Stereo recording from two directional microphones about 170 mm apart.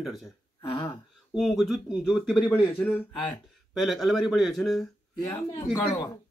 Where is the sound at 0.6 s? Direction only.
30° left (ahead or behind).